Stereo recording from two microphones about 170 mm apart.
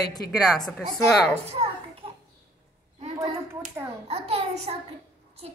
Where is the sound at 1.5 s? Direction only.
35° right (ahead or behind).